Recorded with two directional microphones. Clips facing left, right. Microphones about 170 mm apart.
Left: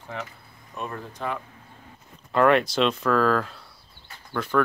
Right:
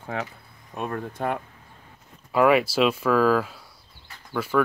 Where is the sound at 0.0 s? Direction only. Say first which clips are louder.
Right 4 dB; 60° right (ahead or behind).